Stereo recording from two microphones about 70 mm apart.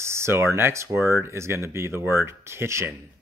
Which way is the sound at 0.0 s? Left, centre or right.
Right.